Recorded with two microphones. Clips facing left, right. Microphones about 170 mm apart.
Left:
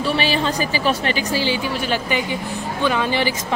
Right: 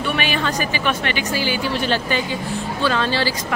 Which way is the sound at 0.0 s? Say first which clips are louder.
Left 2 dB; 30° left (ahead or behind).